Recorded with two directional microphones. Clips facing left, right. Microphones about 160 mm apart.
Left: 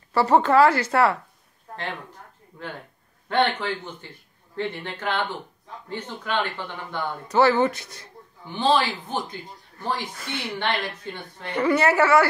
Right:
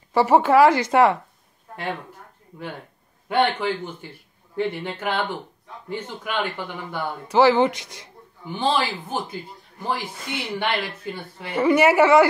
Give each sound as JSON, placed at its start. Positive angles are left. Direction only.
{"t": 0.1, "sound": "speech", "side_deg": -10}
{"t": 2.5, "sound": "speech", "side_deg": -10}